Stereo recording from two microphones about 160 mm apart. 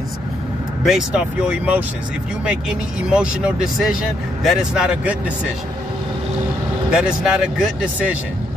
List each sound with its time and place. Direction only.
0.8 s speech: 5° right (ahead or behind)
3.1 s speech: 5° right (ahead or behind)
6.9 s speech: 5° right (ahead or behind)